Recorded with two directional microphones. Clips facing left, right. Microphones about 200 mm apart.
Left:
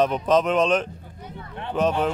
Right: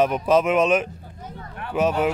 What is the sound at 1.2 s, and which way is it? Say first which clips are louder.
Speech: right 1 dB; 40° right (ahead or behind).